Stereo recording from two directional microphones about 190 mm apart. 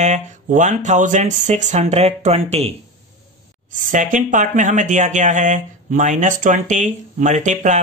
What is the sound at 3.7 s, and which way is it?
Speech, 40° right (ahead or behind).